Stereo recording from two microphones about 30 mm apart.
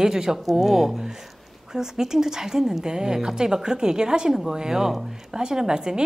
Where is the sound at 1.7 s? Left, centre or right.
Centre.